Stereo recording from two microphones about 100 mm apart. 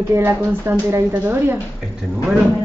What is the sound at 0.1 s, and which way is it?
A woman's voice, 25° right (ahead or behind).